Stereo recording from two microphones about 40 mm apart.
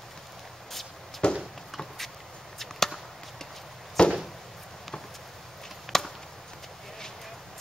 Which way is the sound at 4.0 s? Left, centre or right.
Centre.